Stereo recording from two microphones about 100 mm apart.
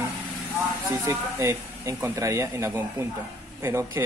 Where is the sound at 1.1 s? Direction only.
30° right (ahead or behind).